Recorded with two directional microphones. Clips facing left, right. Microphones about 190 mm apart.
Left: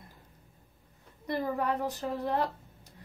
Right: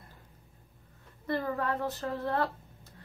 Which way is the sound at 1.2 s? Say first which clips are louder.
Left 1 dB; 15° left (ahead or behind).